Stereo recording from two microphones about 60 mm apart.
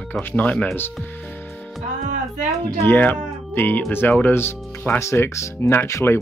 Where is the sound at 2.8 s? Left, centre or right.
Left.